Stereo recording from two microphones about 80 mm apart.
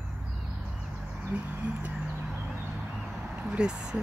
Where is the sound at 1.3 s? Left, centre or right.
Centre.